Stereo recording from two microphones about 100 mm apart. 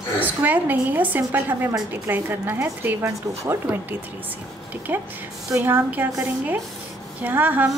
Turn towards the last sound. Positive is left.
turn(degrees=-20)  # may be behind; listen again after turning